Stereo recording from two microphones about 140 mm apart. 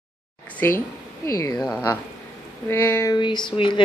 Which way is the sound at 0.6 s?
15° left (ahead or behind).